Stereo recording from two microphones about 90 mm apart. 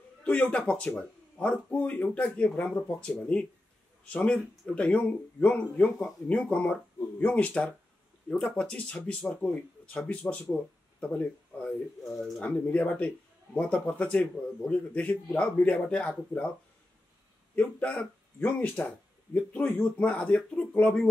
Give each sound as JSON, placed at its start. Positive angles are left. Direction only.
{"t": 0.2, "sound": "speech", "side_deg": 15}
{"t": 17.6, "sound": "speech", "side_deg": 15}